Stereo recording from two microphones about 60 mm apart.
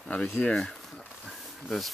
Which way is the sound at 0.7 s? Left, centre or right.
Centre.